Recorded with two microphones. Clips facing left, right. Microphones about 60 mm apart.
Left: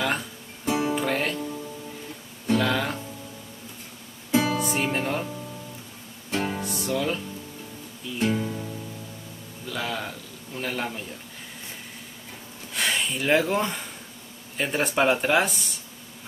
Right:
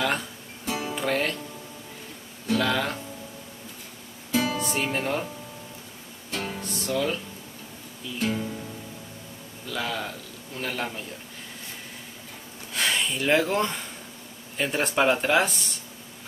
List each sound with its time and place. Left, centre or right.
0.7 s music: left
0.9 s music: centre
2.5 s speech: centre
4.3 s music: left
4.6 s music: centre
6.3 s music: left
6.6 s speech: centre
8.2 s music: centre
9.7 s a man's voice: centre
12.7 s speech: centre